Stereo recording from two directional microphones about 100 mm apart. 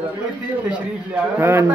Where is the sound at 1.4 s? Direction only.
20° right (ahead or behind).